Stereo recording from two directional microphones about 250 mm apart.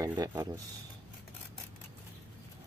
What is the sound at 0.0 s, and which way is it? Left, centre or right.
Speech, centre.